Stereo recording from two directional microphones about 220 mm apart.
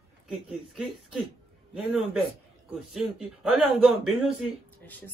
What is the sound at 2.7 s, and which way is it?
Speech, centre (ahead or behind).